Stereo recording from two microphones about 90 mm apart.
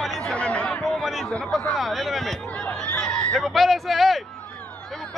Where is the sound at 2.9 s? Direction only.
10° left (ahead or behind).